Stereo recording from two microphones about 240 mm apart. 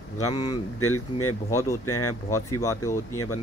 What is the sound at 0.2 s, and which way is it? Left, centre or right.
Speech, centre.